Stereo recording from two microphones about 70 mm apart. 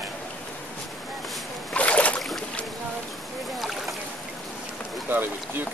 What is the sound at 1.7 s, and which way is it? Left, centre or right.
Boat, centre.